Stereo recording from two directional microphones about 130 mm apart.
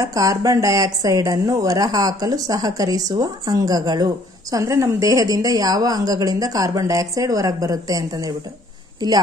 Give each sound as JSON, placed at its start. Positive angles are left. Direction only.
{"t": 0.0, "sound": "speech", "side_deg": -25}